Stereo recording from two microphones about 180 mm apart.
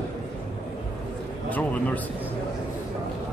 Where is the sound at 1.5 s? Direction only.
10° left (ahead or behind).